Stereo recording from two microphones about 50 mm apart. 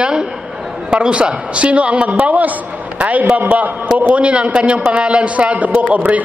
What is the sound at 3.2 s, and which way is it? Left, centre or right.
Speech, right.